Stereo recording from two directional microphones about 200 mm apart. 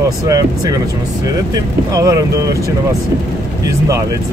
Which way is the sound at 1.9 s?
20° right (ahead or behind).